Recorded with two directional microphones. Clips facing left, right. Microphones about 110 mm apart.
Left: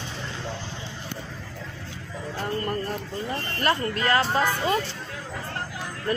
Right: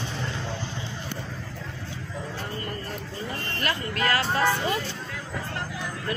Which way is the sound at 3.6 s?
30° left (ahead or behind).